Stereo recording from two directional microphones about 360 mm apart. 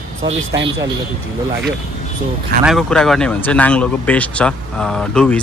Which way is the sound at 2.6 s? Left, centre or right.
Centre.